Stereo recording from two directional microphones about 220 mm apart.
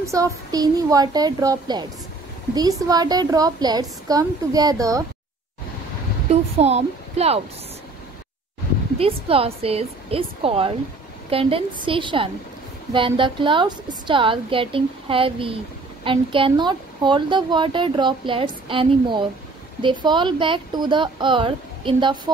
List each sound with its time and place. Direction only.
0.0 s a woman's voice: 15° right (ahead or behind)
2.9 s a woman's voice: 15° right (ahead or behind)
6.6 s a woman's voice: 30° right (ahead or behind)
8.9 s a woman's voice: 25° right (ahead or behind)